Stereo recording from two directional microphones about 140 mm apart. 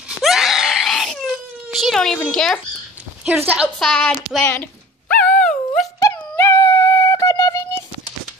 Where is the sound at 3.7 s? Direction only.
5° left (ahead or behind).